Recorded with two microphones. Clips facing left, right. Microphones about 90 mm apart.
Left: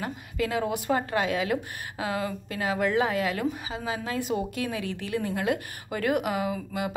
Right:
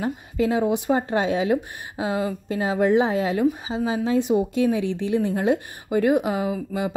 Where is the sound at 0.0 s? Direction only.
25° right (ahead or behind).